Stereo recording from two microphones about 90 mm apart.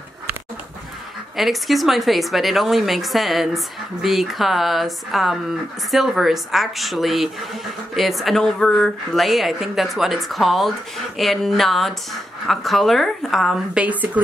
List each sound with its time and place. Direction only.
1.3 s speech: centre (ahead or behind)
13.7 s speech: 15° right (ahead or behind)